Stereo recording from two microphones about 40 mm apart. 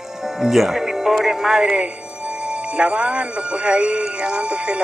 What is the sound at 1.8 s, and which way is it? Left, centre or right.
Speech, right.